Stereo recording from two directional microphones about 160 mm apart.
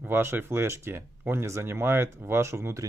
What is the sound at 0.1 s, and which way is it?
Speech, 15° right (ahead or behind).